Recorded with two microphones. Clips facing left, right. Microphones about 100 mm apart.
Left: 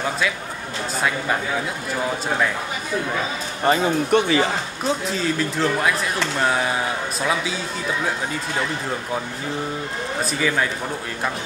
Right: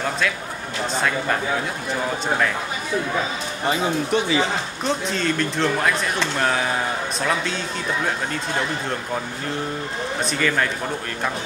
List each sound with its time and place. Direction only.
0.9 s speech: 5° left (ahead or behind)
3.6 s speech: 50° left (ahead or behind)
4.8 s speech: 5° left (ahead or behind)
10.2 s speech: 5° left (ahead or behind)